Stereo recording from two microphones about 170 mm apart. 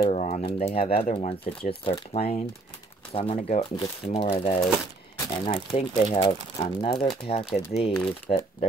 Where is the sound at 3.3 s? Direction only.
45° left (ahead or behind).